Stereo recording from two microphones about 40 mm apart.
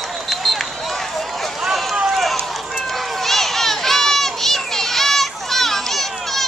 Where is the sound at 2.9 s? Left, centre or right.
Centre.